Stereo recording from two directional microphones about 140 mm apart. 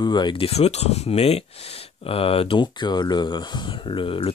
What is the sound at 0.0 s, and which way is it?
Speech, 30° left (ahead or behind).